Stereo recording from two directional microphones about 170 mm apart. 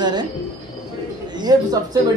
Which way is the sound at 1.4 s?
25° right (ahead or behind).